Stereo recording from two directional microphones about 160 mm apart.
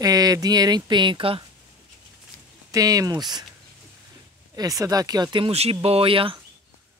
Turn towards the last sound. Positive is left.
turn(degrees=-35)  # may be behind; listen again after turning